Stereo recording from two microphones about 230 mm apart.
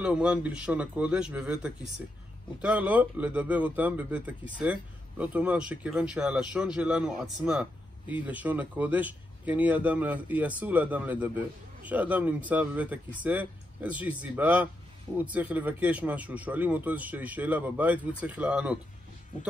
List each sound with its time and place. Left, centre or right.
0.0 s speech: centre